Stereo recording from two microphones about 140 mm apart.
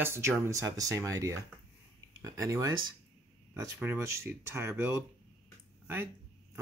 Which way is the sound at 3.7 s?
15° right (ahead or behind).